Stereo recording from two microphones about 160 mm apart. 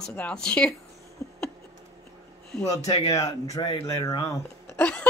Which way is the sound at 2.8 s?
40° left (ahead or behind).